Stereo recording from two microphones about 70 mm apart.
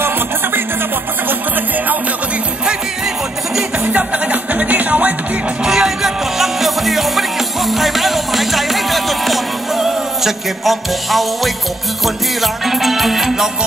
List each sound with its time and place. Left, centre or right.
3.8 s music: centre
5.6 s music: centre